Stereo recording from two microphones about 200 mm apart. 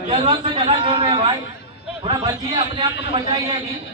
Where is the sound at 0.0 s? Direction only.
25° right (ahead or behind).